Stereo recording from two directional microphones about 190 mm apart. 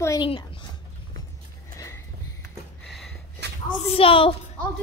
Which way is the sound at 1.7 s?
15° left (ahead or behind).